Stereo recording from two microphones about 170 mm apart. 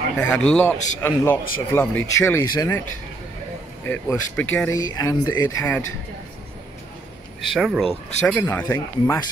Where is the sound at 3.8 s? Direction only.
15° left (ahead or behind).